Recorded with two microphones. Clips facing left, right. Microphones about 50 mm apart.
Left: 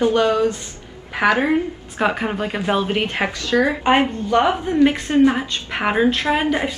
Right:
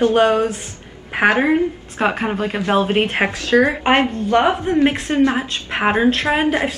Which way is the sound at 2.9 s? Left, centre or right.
Right.